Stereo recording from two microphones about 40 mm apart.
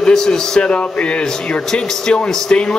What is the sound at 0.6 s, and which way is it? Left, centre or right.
Speech, left.